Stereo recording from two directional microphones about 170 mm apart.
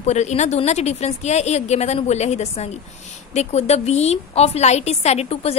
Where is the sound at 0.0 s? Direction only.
40° left (ahead or behind).